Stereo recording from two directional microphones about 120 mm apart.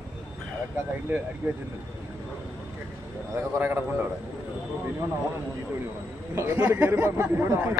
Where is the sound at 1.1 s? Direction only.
15° right (ahead or behind).